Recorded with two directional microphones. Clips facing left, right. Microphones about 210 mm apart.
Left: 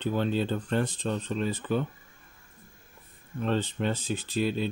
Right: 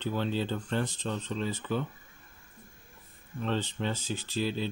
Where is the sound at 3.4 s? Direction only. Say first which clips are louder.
Left 4 dB; 50° left (ahead or behind).